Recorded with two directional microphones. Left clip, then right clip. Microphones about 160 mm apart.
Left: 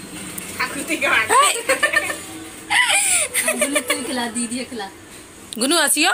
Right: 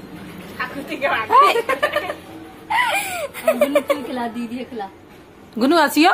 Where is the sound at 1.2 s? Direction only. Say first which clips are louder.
Right 5 dB; centre (ahead or behind).